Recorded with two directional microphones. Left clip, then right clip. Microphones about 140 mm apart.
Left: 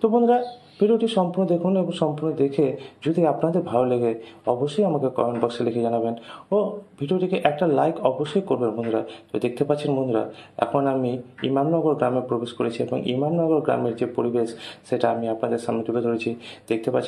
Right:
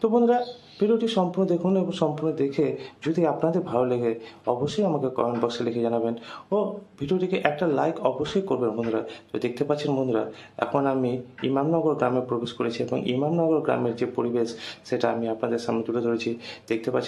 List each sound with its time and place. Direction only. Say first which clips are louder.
0.0 s a man's voice: left 2 dB; 5° left (ahead or behind)